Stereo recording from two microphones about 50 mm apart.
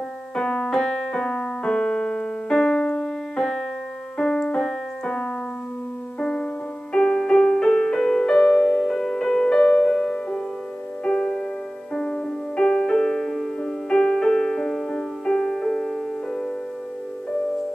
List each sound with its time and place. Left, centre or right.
0.4 s keyboard: centre
4.2 s music: centre
4.6 s keyboard: centre
6.1 s music: centre